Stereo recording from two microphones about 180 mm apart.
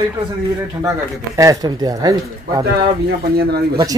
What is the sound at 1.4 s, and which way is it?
Speech, 20° right (ahead or behind).